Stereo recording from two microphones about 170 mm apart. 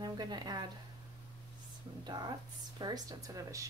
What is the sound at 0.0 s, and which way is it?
Speech, 25° right (ahead or behind).